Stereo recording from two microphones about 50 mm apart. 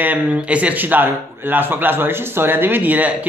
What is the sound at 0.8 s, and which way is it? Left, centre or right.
Speech, right.